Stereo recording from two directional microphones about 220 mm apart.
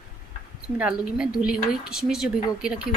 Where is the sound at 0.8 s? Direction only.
5° right (ahead or behind).